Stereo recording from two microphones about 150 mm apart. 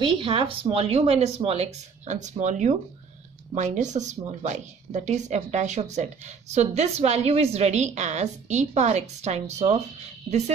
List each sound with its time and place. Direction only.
0.0 s a woman's voice: 35° right (ahead or behind)